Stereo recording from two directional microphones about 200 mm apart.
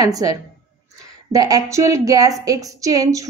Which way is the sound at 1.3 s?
15° right (ahead or behind).